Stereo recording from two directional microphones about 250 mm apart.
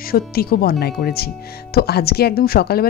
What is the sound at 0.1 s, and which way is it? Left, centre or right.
Speech, left.